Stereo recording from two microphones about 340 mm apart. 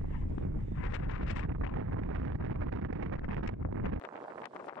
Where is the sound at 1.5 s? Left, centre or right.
Right.